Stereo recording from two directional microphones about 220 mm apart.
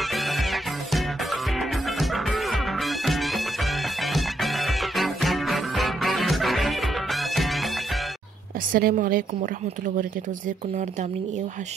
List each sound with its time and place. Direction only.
0.1 s music: centre (ahead or behind)
8.7 s a woman's voice: 40° right (ahead or behind)